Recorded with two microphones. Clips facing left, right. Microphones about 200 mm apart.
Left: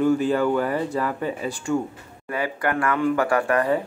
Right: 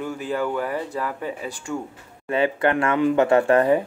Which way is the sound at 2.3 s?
25° right (ahead or behind).